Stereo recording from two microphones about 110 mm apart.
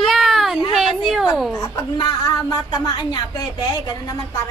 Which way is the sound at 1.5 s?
35° left (ahead or behind).